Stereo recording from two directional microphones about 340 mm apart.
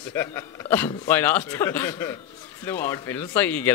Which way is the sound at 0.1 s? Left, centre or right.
Centre.